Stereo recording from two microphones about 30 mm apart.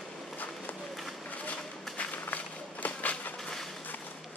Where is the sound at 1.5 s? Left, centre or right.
Left.